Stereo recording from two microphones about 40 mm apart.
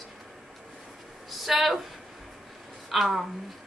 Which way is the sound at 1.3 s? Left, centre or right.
Centre.